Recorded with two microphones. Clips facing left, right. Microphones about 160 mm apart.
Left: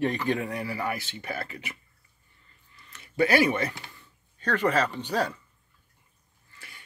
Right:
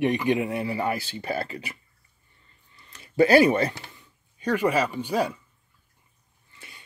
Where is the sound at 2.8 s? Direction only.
30° right (ahead or behind).